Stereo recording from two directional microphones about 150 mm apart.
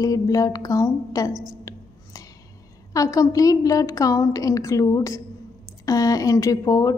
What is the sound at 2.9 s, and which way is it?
A woman's voice, 20° left (ahead or behind).